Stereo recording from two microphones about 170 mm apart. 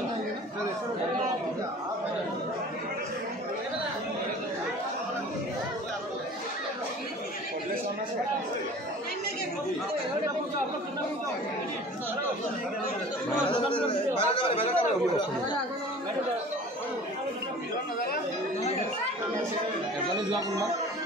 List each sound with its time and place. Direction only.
13.8 s a man's voice: 30° left (ahead or behind)
20.2 s speech: 25° right (ahead or behind)